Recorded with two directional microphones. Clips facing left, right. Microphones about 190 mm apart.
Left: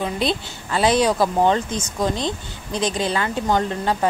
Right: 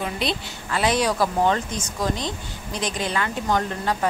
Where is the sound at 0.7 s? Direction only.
30° left (ahead or behind).